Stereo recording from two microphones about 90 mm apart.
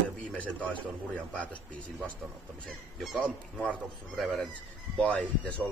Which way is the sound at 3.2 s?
10° left (ahead or behind).